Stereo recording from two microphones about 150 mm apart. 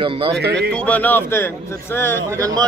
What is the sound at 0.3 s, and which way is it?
Speech, 90° right.